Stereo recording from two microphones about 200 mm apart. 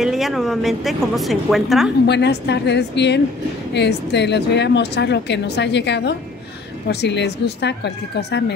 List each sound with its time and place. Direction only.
0.0 s a woman's voice: centre (ahead or behind)
2.0 s speech: 60° left (ahead or behind)